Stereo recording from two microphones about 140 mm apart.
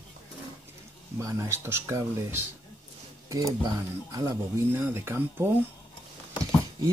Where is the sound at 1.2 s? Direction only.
20° right (ahead or behind).